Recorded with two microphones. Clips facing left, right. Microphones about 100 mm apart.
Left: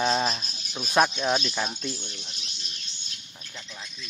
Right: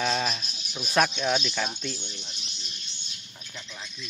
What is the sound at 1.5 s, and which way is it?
Speech, 10° left (ahead or behind).